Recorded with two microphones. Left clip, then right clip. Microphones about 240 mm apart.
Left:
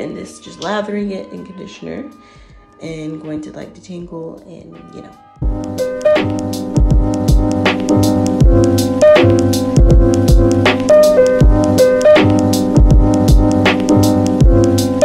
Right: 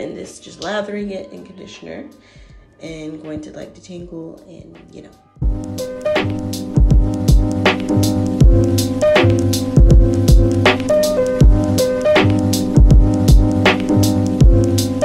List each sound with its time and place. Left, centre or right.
0.2 s speech: centre
2.8 s speech: centre
5.6 s music: centre